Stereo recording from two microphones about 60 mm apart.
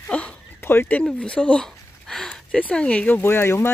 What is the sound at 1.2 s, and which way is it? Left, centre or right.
Speech, centre.